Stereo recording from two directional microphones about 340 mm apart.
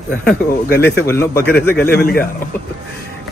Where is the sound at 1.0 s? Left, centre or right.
Centre.